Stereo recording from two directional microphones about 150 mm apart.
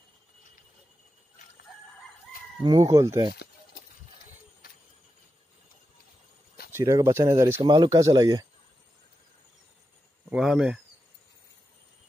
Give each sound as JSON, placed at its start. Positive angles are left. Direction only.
{"t": 2.6, "sound": "speech", "side_deg": -25}
{"t": 6.7, "sound": "speech", "side_deg": -20}
{"t": 7.6, "sound": "speech", "side_deg": -30}
{"t": 10.3, "sound": "speech", "side_deg": -5}